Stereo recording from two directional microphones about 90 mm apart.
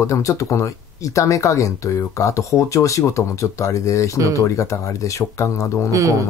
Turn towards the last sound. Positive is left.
turn(degrees=-35)  # may be behind; listen again after turning